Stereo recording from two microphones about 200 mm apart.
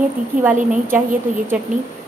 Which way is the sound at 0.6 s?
40° right (ahead or behind).